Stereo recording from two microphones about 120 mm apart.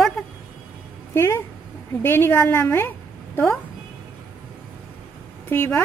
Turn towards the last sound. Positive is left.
turn(degrees=20)  # may be behind; listen again after turning